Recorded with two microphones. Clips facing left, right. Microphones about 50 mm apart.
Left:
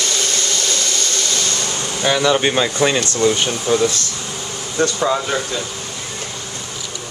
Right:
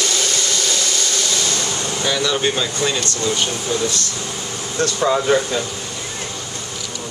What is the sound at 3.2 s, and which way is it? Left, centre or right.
Speech, left.